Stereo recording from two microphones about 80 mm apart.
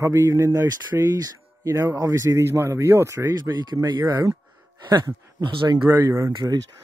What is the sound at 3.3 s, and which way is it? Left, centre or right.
Speech, right.